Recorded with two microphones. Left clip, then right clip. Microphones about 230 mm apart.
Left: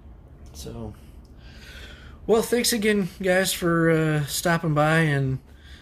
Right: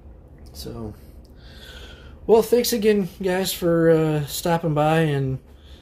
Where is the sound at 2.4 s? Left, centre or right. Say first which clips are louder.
Right 4 dB; centre.